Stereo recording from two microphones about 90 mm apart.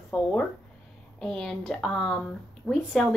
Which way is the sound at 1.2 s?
5° left (ahead or behind).